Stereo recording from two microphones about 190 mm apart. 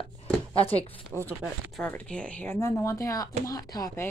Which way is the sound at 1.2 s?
5° left (ahead or behind).